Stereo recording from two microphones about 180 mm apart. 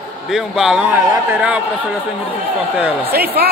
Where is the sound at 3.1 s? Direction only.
60° right (ahead or behind).